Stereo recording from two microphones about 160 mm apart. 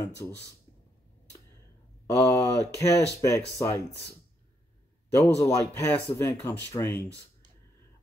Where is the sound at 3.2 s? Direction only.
20° left (ahead or behind).